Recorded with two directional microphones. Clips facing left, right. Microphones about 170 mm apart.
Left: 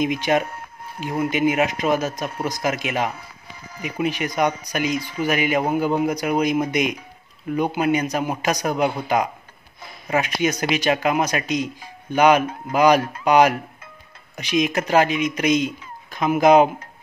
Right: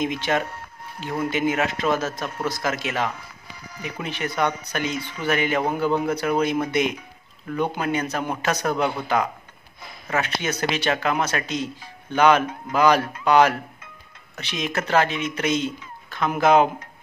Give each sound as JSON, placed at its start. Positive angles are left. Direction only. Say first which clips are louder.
{"t": 0.0, "sound": "speech", "louder": "left 3 dB", "side_deg": 15}